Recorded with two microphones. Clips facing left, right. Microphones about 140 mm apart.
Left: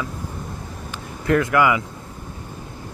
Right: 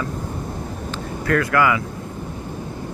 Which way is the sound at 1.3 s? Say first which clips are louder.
Left 1 dB; 20° left (ahead or behind).